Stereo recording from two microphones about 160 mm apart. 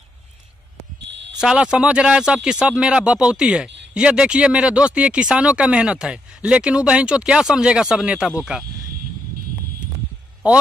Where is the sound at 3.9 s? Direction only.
5° right (ahead or behind).